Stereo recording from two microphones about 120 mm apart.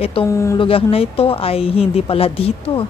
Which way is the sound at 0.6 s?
50° left (ahead or behind).